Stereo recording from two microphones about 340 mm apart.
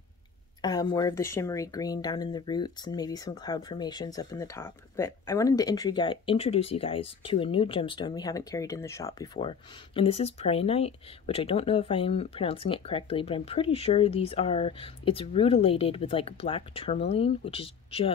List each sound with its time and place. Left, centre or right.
0.6 s speech: centre